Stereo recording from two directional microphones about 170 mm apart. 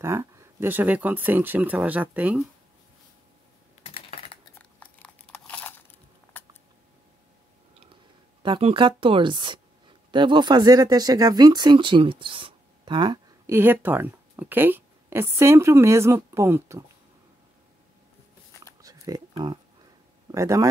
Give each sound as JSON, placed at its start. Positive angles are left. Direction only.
{"t": 0.0, "sound": "speech", "side_deg": -15}
{"t": 3.8, "sound": "typing", "side_deg": 35}
{"t": 4.6, "sound": "crumpling", "side_deg": 10}
{"t": 7.8, "sound": "speech", "side_deg": -30}
{"t": 13.5, "sound": "speech", "side_deg": -10}
{"t": 18.8, "sound": "a sound", "side_deg": -20}
{"t": 19.3, "sound": "speech", "side_deg": -25}